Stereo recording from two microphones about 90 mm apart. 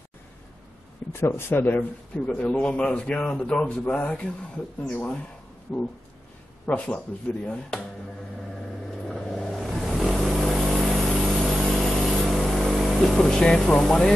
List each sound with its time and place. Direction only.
1.1 s a man's voice: 30° left (ahead or behind); by 7.8 s 10° left (ahead or behind)
9.1 s vehicle: centre (ahead or behind)